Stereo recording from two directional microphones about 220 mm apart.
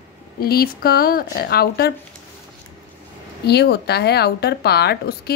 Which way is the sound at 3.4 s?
50° left (ahead or behind).